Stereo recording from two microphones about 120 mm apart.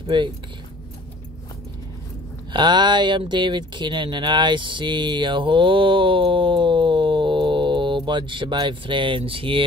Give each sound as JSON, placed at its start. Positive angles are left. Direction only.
{"t": 0.0, "sound": "speech", "side_deg": -40}
{"t": 2.5, "sound": "speech", "side_deg": -40}